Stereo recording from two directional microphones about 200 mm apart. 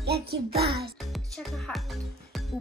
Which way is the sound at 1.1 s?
Centre (ahead or behind).